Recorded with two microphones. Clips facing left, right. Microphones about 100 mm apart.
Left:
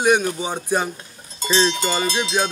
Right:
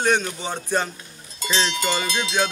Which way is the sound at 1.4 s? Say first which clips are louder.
Left 4 dB; 30° left (ahead or behind).